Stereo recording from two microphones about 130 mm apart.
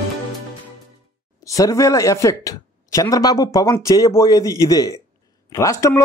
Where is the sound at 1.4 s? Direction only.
25° left (ahead or behind).